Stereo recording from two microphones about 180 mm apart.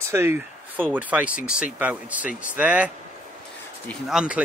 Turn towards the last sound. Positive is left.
turn(degrees=-5)  # may be behind; listen again after turning